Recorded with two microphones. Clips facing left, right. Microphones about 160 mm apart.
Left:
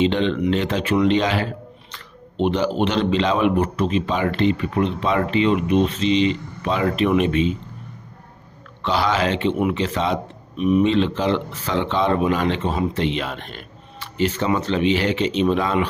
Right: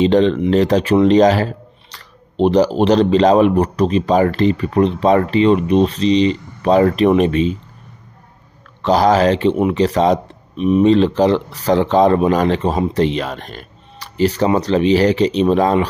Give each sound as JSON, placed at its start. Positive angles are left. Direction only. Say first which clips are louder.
{"t": 0.0, "sound": "speech", "louder": "right 6 dB", "side_deg": -40}
{"t": 8.8, "sound": "speech", "louder": "right 8 dB", "side_deg": -40}
{"t": 10.6, "sound": "speech", "louder": "right 4 dB", "side_deg": -25}
{"t": 10.9, "sound": "speech", "louder": "right 7 dB", "side_deg": -40}